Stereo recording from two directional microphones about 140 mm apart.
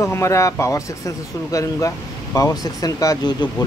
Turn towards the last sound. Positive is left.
turn(degrees=25)  # may be behind; listen again after turning